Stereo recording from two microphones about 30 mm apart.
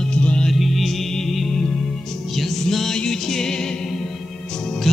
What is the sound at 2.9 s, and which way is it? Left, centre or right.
Music, centre.